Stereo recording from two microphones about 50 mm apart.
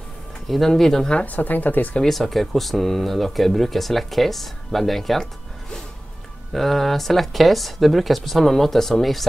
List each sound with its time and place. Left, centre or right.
0.5 s speech: centre
1.2 s speech: left
2.0 s speech: centre
6.5 s speech: centre